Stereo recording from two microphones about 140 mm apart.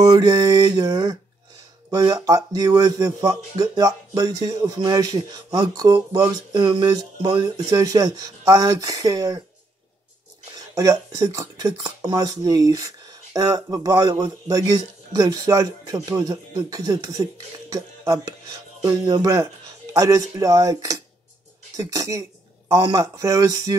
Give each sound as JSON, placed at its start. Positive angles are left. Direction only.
{"t": 0.0, "sound": "speech", "side_deg": -25}
{"t": 6.5, "sound": "a sound", "side_deg": -35}
{"t": 6.9, "sound": "speech", "side_deg": -30}
{"t": 10.5, "sound": "speech", "side_deg": -25}
{"t": 19.9, "sound": "speech", "side_deg": -25}